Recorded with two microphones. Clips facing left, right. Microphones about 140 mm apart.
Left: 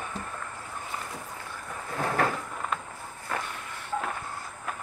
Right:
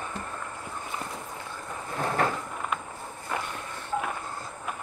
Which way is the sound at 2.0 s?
20° right (ahead or behind).